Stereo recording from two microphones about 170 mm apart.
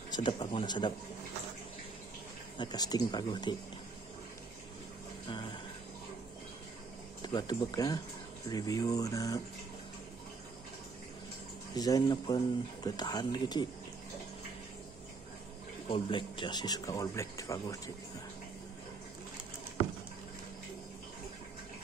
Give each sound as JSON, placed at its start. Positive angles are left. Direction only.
{"t": 0.1, "sound": "speech", "side_deg": 25}
{"t": 2.5, "sound": "speech", "side_deg": 25}
{"t": 7.2, "sound": "speech", "side_deg": 25}
{"t": 11.7, "sound": "speech", "side_deg": 20}
{"t": 15.9, "sound": "speech", "side_deg": 30}